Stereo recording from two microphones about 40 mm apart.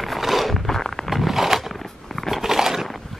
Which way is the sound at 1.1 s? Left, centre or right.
Centre.